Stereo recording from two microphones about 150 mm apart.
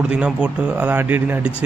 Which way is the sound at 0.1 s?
10° right (ahead or behind).